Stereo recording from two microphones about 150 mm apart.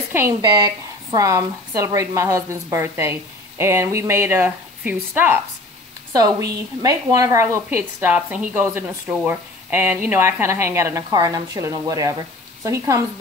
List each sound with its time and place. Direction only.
0.4 s a woman's voice: 25° right (ahead or behind)
6.1 s a woman's voice: 25° right (ahead or behind)